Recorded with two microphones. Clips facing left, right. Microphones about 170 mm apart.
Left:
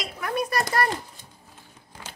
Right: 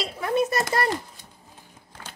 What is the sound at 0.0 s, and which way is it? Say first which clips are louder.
Speech: right 4 dB; 25° right (ahead or behind).